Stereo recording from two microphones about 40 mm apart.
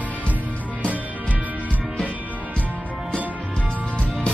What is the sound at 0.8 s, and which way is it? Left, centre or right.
Music, right.